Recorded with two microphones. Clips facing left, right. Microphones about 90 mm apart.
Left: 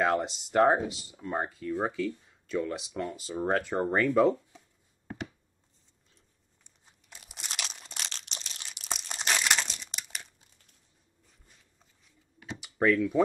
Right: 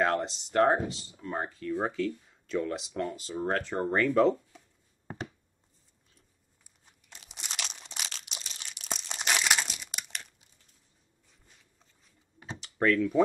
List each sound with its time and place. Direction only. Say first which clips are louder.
0.0 s speech: left 1 dB; 5° left (ahead or behind)
5.0 s a sound: even; 35° right (ahead or behind)
7.1 s crunch: even; 5° left (ahead or behind)
12.5 s computer keyboard: left 1 dB; 10° left (ahead or behind)